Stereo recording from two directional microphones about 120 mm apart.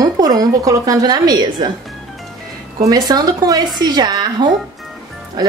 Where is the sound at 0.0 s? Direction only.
30° right (ahead or behind).